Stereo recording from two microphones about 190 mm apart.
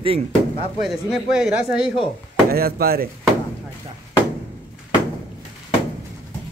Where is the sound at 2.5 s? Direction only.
55° right (ahead or behind).